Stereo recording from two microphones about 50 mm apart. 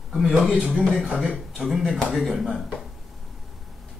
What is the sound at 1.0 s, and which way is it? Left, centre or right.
Speech, centre.